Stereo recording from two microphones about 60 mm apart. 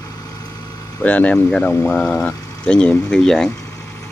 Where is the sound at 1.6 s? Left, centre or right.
Left.